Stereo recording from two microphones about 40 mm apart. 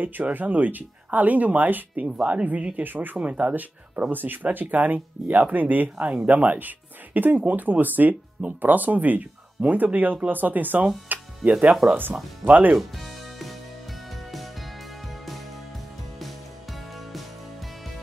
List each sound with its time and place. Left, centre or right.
0.2 s speech: right
2.7 s speech: right
3.2 s speech: right
4.1 s speech: right
11.1 s music: right
11.8 s speech: centre
12.4 s speech: right